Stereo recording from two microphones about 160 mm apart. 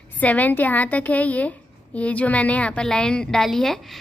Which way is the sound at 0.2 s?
10° left (ahead or behind).